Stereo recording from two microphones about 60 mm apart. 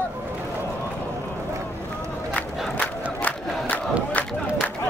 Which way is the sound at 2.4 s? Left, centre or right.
Left.